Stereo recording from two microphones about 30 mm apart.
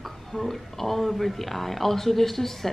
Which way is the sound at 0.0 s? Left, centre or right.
Centre.